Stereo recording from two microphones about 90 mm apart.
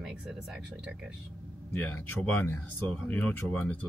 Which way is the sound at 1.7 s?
25° left (ahead or behind).